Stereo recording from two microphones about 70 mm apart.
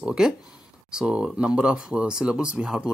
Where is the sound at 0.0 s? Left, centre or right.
Centre.